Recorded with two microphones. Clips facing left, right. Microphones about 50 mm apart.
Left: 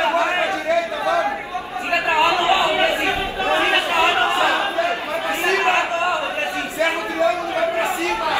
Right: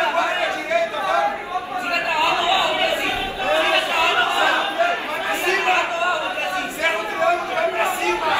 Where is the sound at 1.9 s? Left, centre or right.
Left.